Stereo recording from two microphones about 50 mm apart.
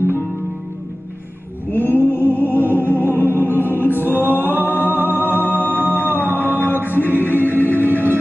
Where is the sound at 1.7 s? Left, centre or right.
Left.